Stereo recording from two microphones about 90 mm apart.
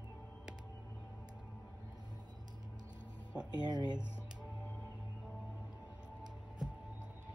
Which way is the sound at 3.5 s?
50° right (ahead or behind).